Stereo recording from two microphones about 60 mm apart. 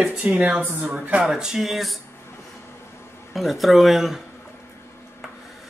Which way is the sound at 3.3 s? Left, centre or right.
Centre.